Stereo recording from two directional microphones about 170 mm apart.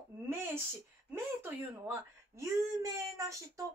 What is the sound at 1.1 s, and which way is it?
Speech, 15° right (ahead or behind).